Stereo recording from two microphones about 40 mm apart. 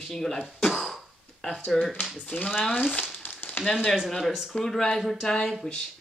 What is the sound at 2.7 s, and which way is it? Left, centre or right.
Speech, left.